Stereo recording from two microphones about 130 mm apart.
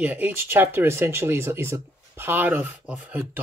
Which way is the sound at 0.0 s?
15° right (ahead or behind).